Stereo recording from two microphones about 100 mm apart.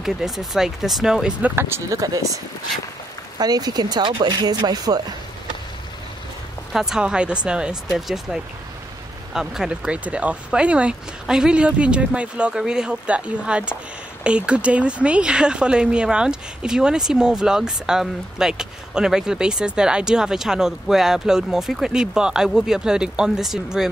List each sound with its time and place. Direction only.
0.0 s speech: 5° right (ahead or behind)
1.5 s speech: 25° right (ahead or behind)
3.3 s speech: 40° right (ahead or behind)
6.7 s speech: 5° right (ahead or behind)